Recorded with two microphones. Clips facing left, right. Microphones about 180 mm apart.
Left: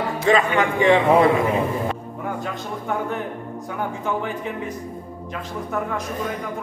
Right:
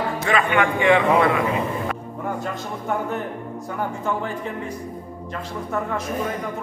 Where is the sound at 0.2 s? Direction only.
25° left (ahead or behind).